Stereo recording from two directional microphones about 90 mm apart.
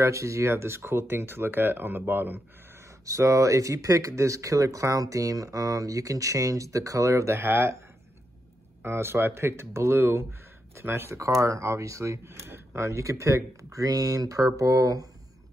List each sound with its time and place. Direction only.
0.0 s speech: 35° right (ahead or behind)
3.1 s speech: 35° right (ahead or behind)
8.8 s speech: 25° right (ahead or behind)